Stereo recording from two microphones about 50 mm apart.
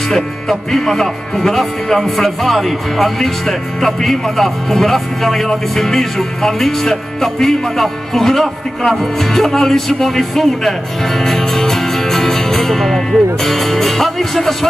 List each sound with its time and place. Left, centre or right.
0.1 s speech: centre